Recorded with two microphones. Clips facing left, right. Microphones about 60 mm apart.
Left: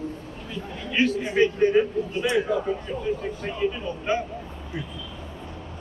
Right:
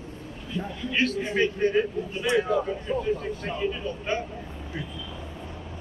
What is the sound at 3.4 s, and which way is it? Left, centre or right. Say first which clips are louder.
Speech: left 2 dB; centre.